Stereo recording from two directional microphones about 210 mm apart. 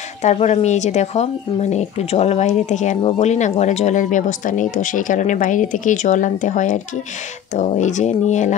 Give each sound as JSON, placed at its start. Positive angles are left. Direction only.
{"t": 0.2, "sound": "speech", "side_deg": 35}